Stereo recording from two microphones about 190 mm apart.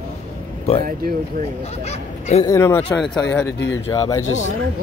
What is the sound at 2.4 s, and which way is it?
Speech, 15° left (ahead or behind).